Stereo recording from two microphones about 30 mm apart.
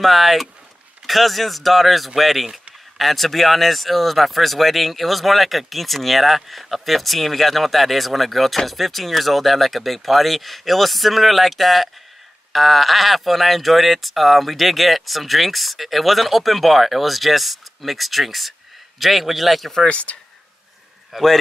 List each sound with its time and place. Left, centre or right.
0.0 s speech: centre
19.9 s speech: left
21.1 s speech: centre